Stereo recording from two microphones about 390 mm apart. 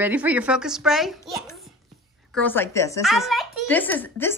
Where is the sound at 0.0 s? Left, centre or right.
Centre.